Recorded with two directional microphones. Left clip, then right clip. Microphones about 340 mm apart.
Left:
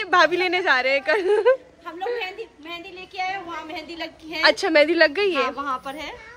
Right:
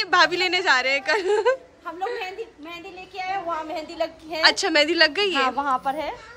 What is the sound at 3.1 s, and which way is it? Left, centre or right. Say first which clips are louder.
A child's voice: right 1 dB; centre.